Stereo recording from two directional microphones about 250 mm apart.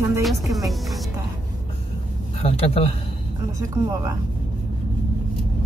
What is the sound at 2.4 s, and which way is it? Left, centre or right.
Speech, left.